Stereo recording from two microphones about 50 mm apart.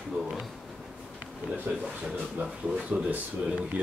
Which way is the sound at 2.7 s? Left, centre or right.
Right.